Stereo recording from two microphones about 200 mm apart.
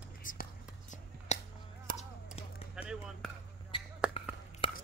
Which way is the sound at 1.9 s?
45° right (ahead or behind).